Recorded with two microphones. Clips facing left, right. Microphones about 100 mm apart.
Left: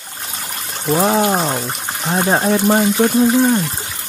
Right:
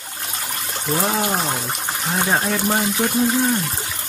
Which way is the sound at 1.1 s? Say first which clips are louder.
Left 6 dB; 25° left (ahead or behind).